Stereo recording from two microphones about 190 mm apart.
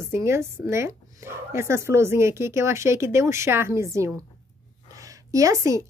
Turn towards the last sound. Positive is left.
turn(degrees=-15)  # may be behind; listen again after turning